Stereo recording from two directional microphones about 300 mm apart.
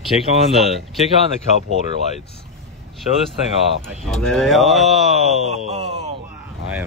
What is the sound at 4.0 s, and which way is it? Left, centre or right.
Speech, centre.